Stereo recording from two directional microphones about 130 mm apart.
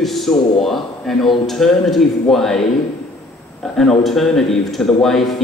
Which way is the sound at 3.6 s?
5° left (ahead or behind).